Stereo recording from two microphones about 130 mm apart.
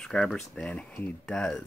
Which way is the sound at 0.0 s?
Centre (ahead or behind).